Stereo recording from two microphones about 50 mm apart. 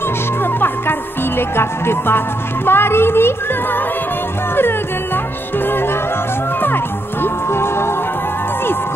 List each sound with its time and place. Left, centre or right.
0.4 s music: left